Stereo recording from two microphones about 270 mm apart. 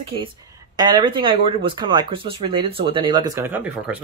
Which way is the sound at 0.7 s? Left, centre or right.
Centre.